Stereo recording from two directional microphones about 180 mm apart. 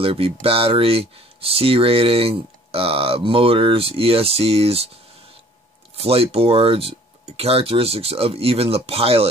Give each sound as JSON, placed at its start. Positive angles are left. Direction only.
{"t": 0.0, "sound": "speech", "side_deg": -30}
{"t": 5.9, "sound": "speech", "side_deg": -35}